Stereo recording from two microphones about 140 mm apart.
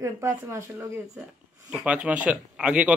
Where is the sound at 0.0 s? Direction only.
20° right (ahead or behind).